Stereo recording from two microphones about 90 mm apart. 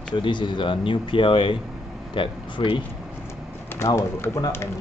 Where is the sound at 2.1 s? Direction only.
70° left (ahead or behind).